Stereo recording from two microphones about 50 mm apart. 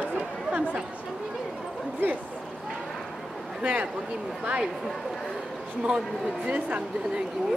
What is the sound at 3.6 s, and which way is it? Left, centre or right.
Speech, right.